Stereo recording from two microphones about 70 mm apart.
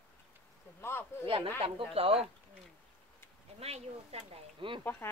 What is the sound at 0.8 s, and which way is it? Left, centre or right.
Speech, left.